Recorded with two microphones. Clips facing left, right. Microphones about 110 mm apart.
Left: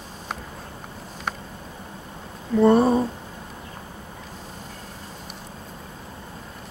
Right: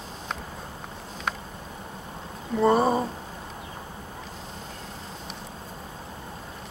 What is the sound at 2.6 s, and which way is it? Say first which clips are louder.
Speech: left 4 dB; centre (ahead or behind).